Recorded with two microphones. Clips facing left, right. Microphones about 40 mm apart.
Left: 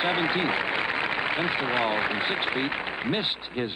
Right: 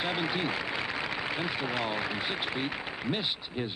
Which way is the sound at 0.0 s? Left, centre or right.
Left.